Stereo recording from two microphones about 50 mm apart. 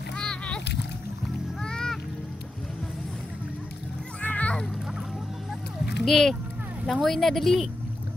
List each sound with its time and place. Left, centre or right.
0.2 s splash: centre
1.6 s music: centre
4.2 s music: left
6.0 s speech: centre